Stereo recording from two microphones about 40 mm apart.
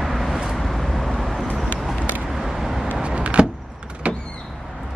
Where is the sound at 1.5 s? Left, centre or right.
Left.